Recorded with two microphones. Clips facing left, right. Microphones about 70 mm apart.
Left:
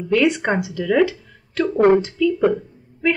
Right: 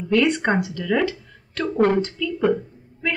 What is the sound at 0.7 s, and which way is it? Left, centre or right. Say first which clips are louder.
Speech: left 4 dB; centre.